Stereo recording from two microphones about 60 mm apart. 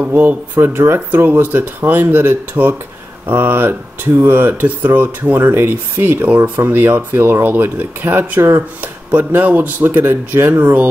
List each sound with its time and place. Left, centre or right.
0.0 s speech: right